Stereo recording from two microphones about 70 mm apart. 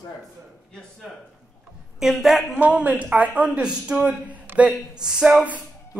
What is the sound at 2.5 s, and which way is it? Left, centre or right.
Speech, right.